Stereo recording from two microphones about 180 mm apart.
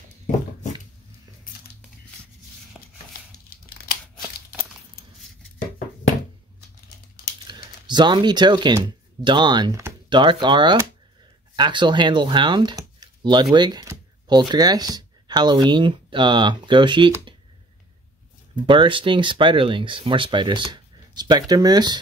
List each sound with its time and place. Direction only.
2.8 s a sound: centre (ahead or behind)
3.1 s tearing: 55° left (ahead or behind)
7.4 s speech: 25° right (ahead or behind)
18.7 s speech: 25° right (ahead or behind)